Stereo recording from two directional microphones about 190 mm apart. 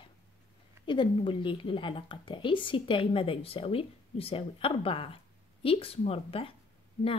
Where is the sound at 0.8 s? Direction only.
25° left (ahead or behind).